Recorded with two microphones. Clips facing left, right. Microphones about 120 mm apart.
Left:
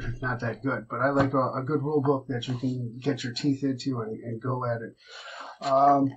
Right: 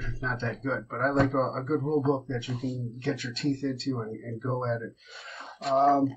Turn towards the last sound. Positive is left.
turn(degrees=0)  # may be behind; listen again after turning